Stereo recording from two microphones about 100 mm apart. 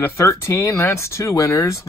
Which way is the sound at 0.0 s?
30° left (ahead or behind).